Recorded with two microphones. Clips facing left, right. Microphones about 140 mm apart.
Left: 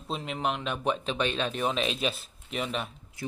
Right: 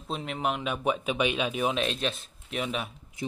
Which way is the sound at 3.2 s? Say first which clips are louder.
Right 2 dB; 20° right (ahead or behind).